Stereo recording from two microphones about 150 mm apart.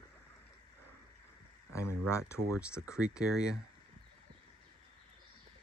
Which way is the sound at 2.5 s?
5° right (ahead or behind).